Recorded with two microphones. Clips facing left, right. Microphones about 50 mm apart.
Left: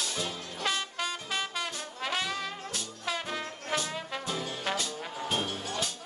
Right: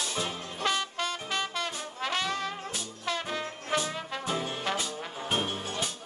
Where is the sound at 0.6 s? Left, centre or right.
Centre.